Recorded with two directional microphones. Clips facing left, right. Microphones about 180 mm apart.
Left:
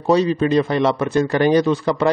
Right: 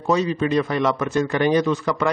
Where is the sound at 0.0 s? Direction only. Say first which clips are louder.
Left 4 dB; 35° left (ahead or behind).